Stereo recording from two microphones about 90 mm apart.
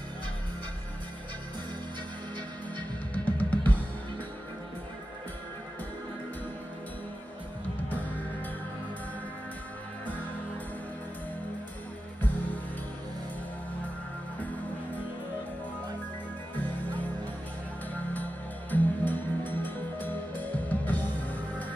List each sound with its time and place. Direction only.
3.3 s music: 20° left (ahead or behind)
18.1 s music: 20° left (ahead or behind)